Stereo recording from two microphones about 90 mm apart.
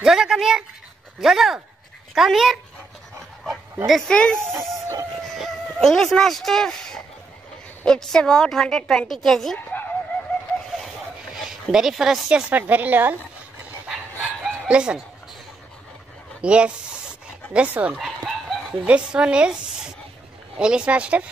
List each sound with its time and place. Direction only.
0.0 s a woman's voice: 5° right (ahead or behind)
3.8 s speech: 5° left (ahead or behind)
4.4 s speech: 25° right (ahead or behind)
5.3 s a woman's voice: centre (ahead or behind)
11.3 s speech: 5° right (ahead or behind); by 13.1 s 20° right (ahead or behind)
14.4 s chicken: 10° right (ahead or behind)
16.3 s speech: 10° right (ahead or behind)
17.9 s chicken: 5° right (ahead or behind)
18.9 s a woman's voice: 10° right (ahead or behind)